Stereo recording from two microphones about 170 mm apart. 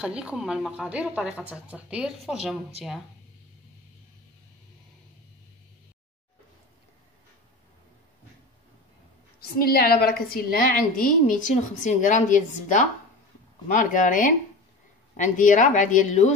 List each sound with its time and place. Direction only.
0.0 s a woman's voice: 5° right (ahead or behind)
9.4 s a woman's voice: 65° left (ahead or behind); by 16.3 s 45° left (ahead or behind)